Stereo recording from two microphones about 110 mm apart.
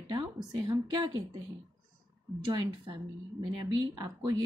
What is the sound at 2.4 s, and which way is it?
A woman's voice, 50° right (ahead or behind).